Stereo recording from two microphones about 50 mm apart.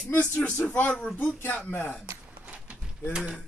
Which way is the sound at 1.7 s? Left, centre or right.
Left.